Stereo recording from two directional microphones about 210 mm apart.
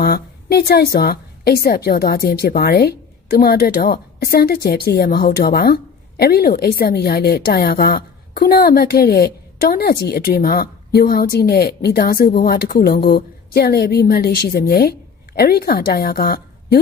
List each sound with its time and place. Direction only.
0.0 s a woman's voice: 50° left (ahead or behind)